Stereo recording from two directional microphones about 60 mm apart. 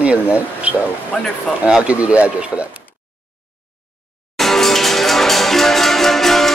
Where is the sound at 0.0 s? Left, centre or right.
Right.